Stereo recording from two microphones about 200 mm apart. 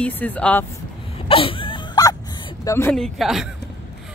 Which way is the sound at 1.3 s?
25° left (ahead or behind).